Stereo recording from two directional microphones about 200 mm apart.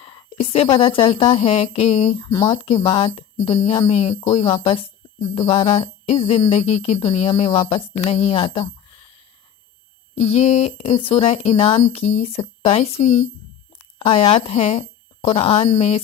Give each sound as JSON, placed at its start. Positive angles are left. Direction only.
{"t": 0.0, "sound": "speech", "side_deg": 25}
{"t": 2.2, "sound": "speech", "side_deg": 20}
{"t": 10.1, "sound": "speech", "side_deg": 35}